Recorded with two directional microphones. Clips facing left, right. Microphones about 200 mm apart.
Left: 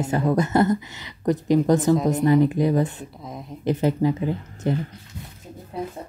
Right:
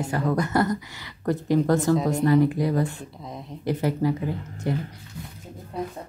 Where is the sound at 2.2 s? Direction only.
20° left (ahead or behind).